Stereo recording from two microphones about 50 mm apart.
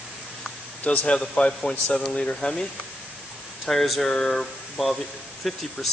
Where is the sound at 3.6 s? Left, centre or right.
Centre.